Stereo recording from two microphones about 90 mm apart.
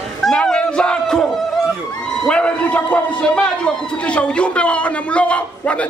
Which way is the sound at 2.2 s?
10° left (ahead or behind).